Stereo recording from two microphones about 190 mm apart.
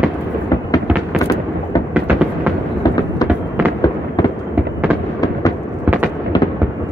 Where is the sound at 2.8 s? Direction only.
20° left (ahead or behind).